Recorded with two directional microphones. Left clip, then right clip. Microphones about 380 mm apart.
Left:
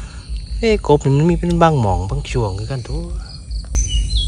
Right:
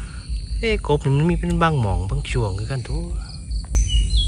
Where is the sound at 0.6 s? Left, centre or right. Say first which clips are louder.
Left 7 dB; centre.